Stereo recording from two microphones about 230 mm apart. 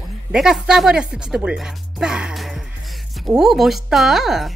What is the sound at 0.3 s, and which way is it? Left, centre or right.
Speech, centre.